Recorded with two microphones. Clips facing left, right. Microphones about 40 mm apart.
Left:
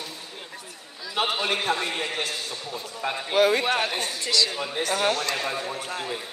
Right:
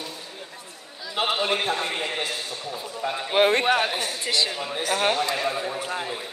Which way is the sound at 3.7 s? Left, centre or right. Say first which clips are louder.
Right 3 dB; right.